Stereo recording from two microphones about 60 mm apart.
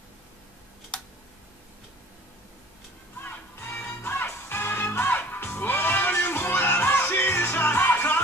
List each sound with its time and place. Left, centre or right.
3.2 s music: left